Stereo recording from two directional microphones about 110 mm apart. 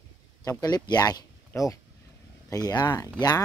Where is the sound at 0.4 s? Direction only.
35° left (ahead or behind).